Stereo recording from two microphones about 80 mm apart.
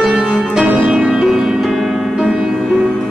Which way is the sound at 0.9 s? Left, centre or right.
Centre.